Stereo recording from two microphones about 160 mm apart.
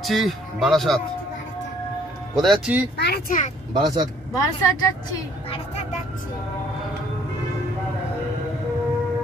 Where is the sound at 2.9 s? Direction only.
90° left.